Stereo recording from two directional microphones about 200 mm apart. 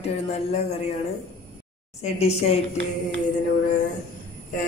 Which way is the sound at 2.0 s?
30° left (ahead or behind).